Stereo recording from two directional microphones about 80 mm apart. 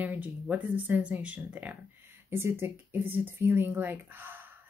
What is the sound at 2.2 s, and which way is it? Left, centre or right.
Speech, right.